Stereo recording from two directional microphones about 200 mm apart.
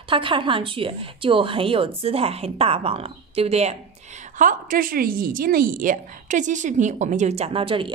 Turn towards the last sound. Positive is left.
turn(degrees=-25)  # may be behind; listen again after turning